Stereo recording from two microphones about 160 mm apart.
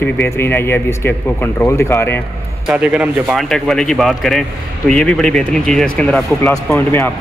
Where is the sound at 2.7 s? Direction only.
5° right (ahead or behind).